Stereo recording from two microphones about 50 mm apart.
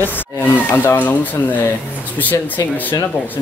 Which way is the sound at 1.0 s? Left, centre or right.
Left.